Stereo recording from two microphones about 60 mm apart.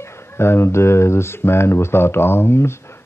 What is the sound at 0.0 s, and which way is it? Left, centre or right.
Speech, left.